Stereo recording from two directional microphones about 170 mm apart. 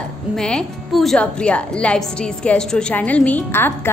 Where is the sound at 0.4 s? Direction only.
5° left (ahead or behind).